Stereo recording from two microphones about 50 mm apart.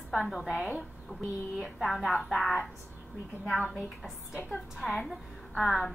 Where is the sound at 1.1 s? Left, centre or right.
Left.